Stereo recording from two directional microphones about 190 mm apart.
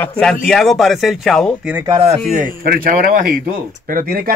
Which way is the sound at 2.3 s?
45° right (ahead or behind).